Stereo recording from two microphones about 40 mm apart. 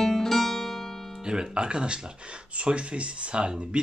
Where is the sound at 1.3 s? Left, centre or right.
Right.